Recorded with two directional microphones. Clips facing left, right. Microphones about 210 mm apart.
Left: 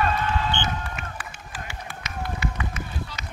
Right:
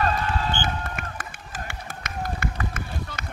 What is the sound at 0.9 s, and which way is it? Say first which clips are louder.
Run: right 1 dB; 50° right (ahead or behind).